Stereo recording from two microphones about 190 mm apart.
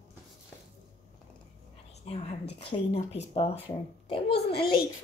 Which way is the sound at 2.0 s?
30° left (ahead or behind).